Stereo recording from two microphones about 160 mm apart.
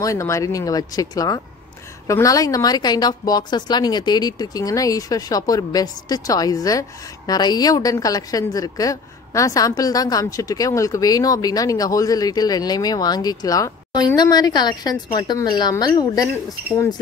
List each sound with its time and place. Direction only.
0.0 s a woman's voice: 20° left (ahead or behind)